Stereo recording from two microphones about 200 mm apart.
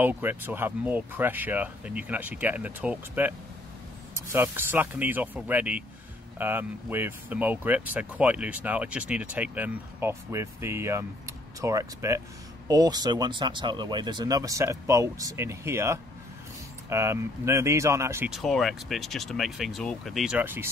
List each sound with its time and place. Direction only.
0.0 s speech: 10° right (ahead or behind)
18.3 s speech: centre (ahead or behind)